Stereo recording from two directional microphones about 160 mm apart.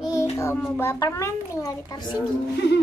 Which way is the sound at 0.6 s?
15° left (ahead or behind).